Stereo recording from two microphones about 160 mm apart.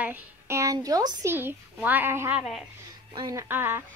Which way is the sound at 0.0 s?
15° right (ahead or behind).